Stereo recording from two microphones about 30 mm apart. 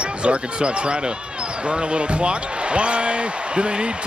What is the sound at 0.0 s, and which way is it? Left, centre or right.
Speech, right.